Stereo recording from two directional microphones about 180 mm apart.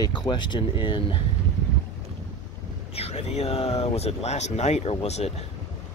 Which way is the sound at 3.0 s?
35° left (ahead or behind).